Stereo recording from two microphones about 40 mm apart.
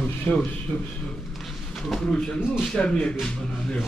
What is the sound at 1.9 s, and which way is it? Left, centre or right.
Speech, centre.